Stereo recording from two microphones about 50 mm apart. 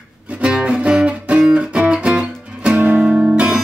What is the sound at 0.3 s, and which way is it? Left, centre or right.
Music, right.